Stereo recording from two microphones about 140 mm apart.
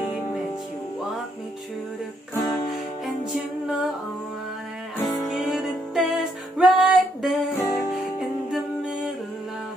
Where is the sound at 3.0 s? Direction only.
Centre (ahead or behind).